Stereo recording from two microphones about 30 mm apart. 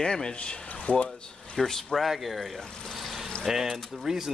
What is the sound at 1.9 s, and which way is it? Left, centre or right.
Speech, centre.